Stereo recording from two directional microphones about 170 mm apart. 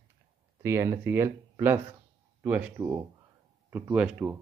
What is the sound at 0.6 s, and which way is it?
Speech, 15° right (ahead or behind).